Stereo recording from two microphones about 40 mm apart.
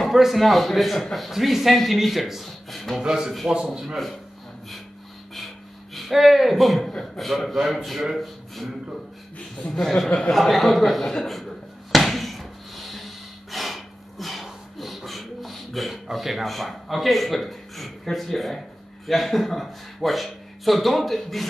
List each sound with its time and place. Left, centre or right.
0.0 s speech: centre
3.0 s a man's voice: centre
5.9 s a man's voice: centre
10.3 s a sound: centre
19.0 s speech: centre